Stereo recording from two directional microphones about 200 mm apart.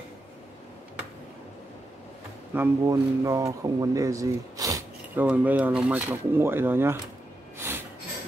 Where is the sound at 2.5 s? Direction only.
15° right (ahead or behind).